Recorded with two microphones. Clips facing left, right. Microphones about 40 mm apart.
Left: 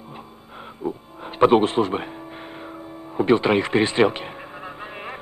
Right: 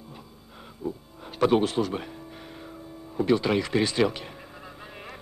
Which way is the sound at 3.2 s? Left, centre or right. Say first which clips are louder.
Left 5 dB; left.